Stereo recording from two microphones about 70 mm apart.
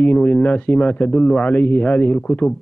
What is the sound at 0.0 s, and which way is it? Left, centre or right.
A man's voice, centre.